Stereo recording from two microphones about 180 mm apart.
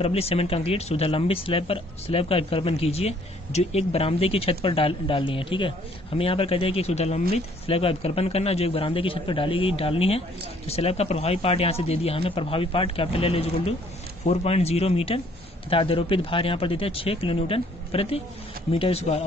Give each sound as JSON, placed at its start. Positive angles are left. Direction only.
{"t": 0.0, "sound": "speech", "side_deg": 35}